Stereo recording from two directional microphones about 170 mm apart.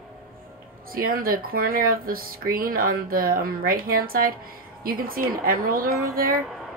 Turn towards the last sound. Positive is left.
turn(degrees=-60)  # may be behind; listen again after turning